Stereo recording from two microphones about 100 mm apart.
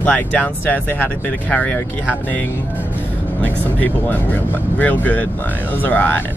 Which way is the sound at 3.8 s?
20° left (ahead or behind).